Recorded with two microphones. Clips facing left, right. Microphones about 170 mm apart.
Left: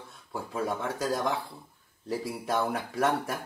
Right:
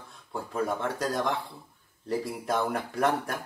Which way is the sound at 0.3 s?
Centre (ahead or behind).